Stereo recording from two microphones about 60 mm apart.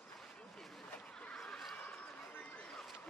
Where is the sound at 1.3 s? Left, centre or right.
Centre.